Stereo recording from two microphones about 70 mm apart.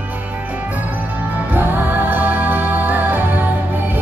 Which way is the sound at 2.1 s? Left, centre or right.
Right.